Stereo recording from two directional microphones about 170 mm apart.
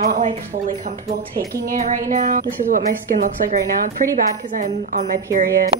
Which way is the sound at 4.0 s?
50° right (ahead or behind).